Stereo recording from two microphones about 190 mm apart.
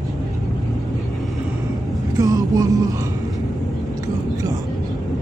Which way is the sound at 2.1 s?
20° right (ahead or behind).